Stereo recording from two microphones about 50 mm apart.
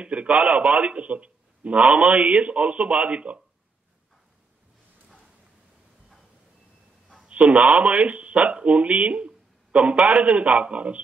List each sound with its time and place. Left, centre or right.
0.0 s a man's voice: right
7.2 s speech: right